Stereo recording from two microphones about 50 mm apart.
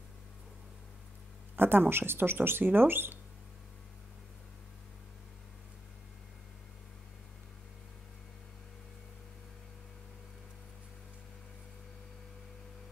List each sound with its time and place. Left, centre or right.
1.6 s speech: right